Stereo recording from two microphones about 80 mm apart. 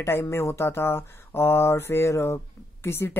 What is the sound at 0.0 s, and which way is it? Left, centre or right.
Speech, left.